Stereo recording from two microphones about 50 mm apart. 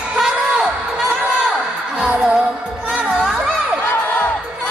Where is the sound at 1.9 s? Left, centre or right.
Centre.